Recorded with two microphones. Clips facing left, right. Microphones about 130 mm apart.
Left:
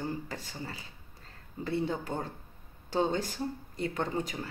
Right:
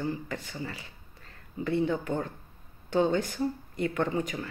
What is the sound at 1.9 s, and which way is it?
Speech, 35° left (ahead or behind).